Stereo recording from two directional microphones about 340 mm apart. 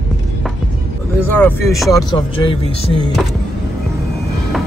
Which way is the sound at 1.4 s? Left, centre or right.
Centre.